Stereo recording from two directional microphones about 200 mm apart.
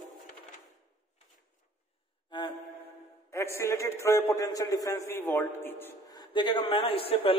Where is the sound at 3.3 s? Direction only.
15° left (ahead or behind).